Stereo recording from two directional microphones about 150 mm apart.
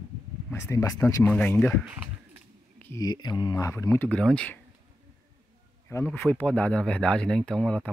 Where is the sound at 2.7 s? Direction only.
10° left (ahead or behind).